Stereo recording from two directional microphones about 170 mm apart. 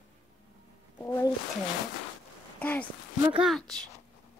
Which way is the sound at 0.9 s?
15° left (ahead or behind).